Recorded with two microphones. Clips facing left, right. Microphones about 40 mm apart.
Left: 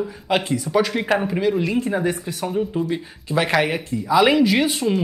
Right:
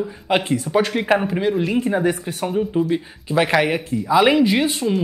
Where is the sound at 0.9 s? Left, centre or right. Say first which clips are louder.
Right 2 dB; centre.